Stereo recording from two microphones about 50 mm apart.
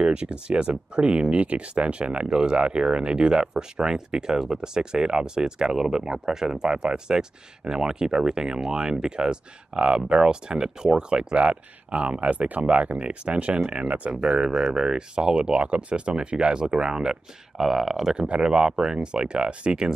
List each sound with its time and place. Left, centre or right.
0.0 s speech: right
14.2 s speech: centre
18.1 s speech: centre